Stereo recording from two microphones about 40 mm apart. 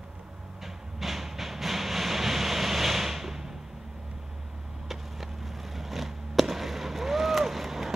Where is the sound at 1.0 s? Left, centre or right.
Centre.